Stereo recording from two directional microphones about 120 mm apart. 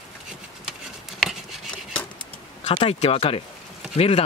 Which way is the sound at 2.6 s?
55° left (ahead or behind).